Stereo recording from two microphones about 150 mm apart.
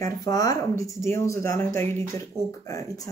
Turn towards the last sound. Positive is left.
turn(degrees=20)  # may be behind; listen again after turning